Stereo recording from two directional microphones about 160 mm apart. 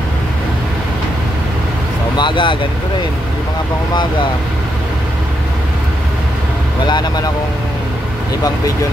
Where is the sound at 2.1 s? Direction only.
30° left (ahead or behind).